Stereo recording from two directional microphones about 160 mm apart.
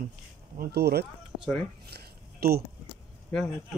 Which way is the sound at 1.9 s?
80° right.